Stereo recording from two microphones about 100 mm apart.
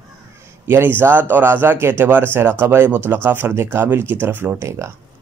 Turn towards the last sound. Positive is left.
turn(degrees=-30)  # may be behind; listen again after turning